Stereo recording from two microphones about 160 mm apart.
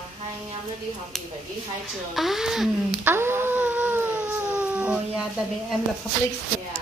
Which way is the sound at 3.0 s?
15° right (ahead or behind).